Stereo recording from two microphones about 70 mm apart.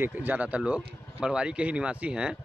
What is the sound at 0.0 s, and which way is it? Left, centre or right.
Speech, right.